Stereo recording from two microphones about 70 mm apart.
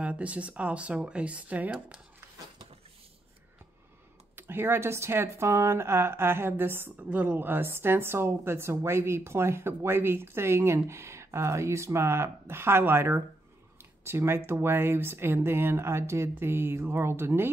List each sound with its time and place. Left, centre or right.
0.0 s speech: centre
4.4 s a woman's voice: right
7.1 s a woman's voice: right